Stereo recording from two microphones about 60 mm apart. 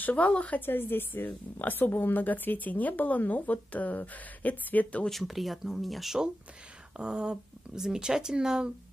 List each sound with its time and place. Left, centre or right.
0.0 s a woman's voice: left
0.6 s a woman's voice: left
5.0 s speech: centre
7.0 s speech: centre